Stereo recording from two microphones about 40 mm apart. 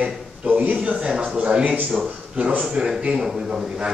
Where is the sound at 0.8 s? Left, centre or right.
Right.